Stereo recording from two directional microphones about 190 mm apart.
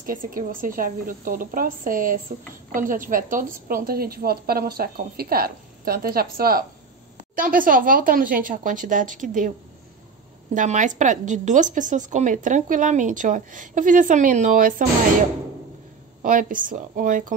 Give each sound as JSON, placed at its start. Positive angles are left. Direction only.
{"t": 0.0, "sound": "a woman's voice", "side_deg": -45}
{"t": 10.5, "sound": "speech", "side_deg": -40}
{"t": 16.2, "sound": "a woman's voice", "side_deg": -45}